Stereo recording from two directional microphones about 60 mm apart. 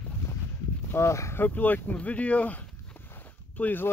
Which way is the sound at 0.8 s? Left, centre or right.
Left.